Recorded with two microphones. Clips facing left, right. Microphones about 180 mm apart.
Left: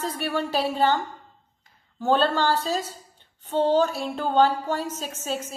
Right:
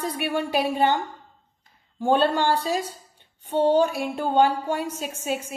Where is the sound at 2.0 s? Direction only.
10° right (ahead or behind).